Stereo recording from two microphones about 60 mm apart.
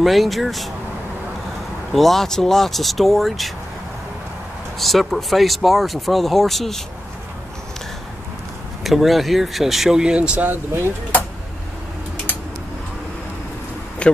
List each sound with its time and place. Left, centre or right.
0.0 s speech: centre
1.9 s speech: centre
4.7 s speech: centre
8.8 s speech: centre
14.0 s a sound: centre